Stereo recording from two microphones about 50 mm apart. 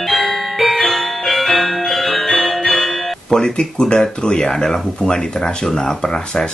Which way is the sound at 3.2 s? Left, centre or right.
Centre.